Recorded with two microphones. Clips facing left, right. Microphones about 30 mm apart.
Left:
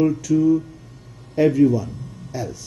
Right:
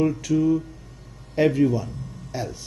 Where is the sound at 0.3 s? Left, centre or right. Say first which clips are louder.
Left 4 dB; centre.